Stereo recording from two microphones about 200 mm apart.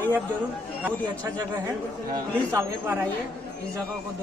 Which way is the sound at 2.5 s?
10° right (ahead or behind).